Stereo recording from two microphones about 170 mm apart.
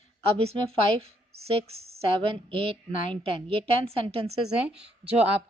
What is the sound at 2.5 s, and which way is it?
A woman's voice, 35° right (ahead or behind).